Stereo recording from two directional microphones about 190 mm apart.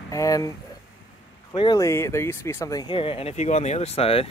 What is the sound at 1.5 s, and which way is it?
Speech, 25° left (ahead or behind).